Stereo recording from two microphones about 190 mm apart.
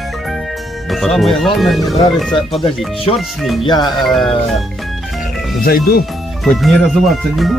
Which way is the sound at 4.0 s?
Centre (ahead or behind).